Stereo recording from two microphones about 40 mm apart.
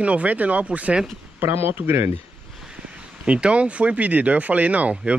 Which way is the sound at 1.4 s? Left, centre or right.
Right.